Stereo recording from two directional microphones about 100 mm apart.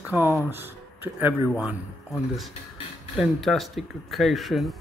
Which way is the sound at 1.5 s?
5° right (ahead or behind).